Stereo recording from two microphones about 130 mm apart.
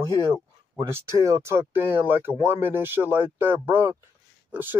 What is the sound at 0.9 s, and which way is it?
Speech, 20° right (ahead or behind).